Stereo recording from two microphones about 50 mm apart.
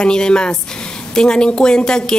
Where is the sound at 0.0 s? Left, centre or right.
Centre.